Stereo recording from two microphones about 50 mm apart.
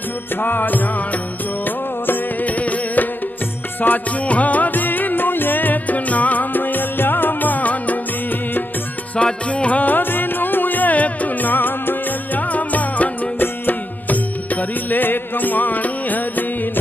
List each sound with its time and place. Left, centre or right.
0.4 s music: left
2.0 s music: left
9.1 s music: left